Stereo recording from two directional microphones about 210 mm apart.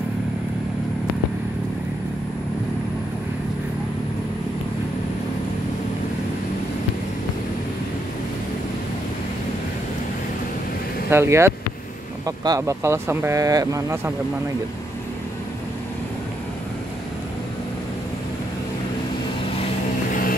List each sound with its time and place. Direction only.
11.1 s speech: 10° right (ahead or behind)